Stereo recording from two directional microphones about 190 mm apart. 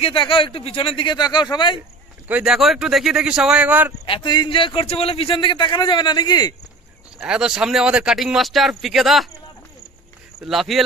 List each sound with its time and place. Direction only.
0.0 s speech: 25° left (ahead or behind)
2.2 s speech: 5° right (ahead or behind)
4.0 s speech: 25° left (ahead or behind)
7.2 s speech: 5° right (ahead or behind)
10.4 s speech: centre (ahead or behind)